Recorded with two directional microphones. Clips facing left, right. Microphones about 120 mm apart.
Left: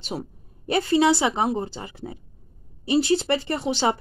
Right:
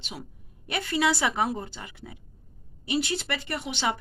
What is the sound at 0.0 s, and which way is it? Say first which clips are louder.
Speech: left 9 dB; 40° left (ahead or behind).